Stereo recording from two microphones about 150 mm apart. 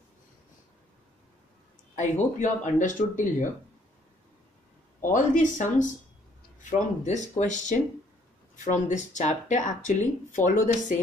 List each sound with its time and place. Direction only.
2.0 s speech: 55° left (ahead or behind)
5.1 s speech: 60° left (ahead or behind)